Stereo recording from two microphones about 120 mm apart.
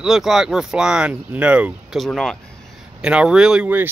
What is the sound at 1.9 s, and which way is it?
Speech, 5° left (ahead or behind).